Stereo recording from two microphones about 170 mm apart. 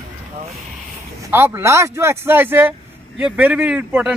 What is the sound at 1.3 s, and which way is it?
Speech, 15° right (ahead or behind).